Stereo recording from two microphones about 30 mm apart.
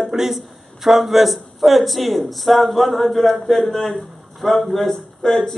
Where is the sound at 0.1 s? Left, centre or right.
Centre.